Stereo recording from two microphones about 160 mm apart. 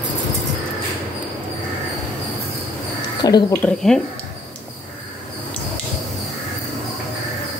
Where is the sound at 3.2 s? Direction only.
25° left (ahead or behind).